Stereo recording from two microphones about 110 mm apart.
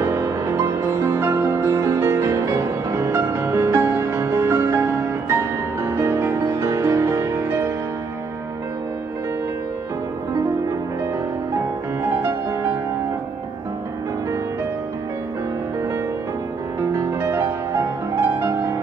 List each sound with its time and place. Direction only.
0.0 s music: 25° right (ahead or behind)
12.0 s music: 20° right (ahead or behind)
16.9 s music: 30° right (ahead or behind)